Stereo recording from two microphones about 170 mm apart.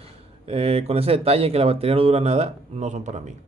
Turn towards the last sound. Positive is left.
turn(degrees=-40)  # may be behind; listen again after turning